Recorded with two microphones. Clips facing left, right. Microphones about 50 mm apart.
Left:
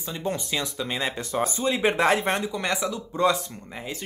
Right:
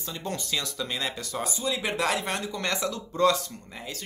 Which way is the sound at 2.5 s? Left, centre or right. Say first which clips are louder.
Left 2 dB; centre.